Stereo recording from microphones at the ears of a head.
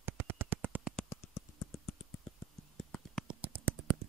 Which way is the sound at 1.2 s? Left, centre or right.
Left.